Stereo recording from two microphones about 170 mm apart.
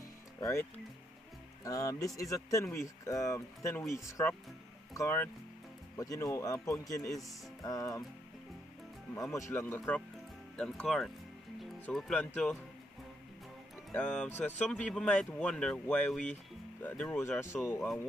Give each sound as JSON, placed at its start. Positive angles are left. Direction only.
{"t": 0.4, "sound": "speech", "side_deg": 15}
{"t": 9.1, "sound": "speech", "side_deg": 20}
{"t": 13.9, "sound": "speech", "side_deg": 5}